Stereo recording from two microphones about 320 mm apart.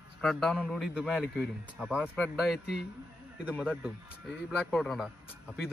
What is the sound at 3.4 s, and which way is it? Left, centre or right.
A man's voice, centre.